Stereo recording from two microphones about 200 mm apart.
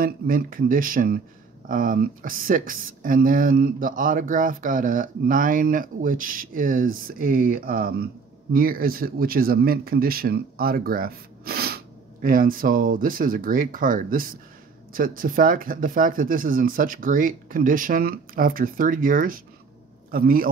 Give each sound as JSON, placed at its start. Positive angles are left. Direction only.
{"t": 0.0, "sound": "a man's voice", "side_deg": -45}